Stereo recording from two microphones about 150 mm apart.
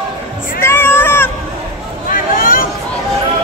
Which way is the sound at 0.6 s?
15° left (ahead or behind).